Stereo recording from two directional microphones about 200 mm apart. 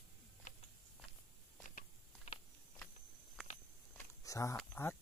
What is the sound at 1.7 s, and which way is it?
Biting, 35° left (ahead or behind).